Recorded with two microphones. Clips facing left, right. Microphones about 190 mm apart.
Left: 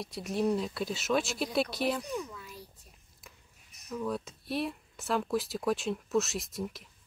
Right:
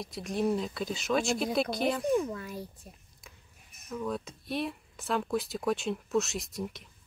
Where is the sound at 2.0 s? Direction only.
50° right (ahead or behind).